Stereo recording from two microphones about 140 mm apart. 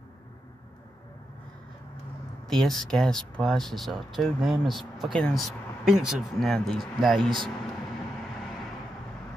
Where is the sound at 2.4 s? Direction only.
Centre (ahead or behind).